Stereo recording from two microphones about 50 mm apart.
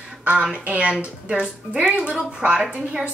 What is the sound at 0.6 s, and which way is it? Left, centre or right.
Speech, right.